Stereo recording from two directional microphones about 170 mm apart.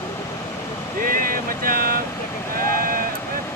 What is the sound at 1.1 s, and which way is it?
Vehicle, 55° right (ahead or behind).